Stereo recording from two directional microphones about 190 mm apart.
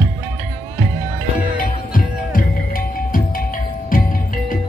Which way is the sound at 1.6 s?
45° left (ahead or behind).